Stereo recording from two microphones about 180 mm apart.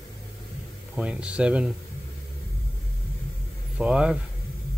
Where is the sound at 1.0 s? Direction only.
5° right (ahead or behind).